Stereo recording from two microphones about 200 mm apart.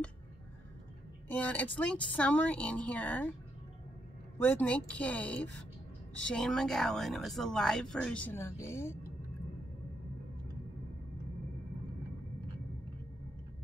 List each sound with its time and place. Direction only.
1.3 s a woman's voice: 10° left (ahead or behind)
4.4 s a woman's voice: 5° left (ahead or behind)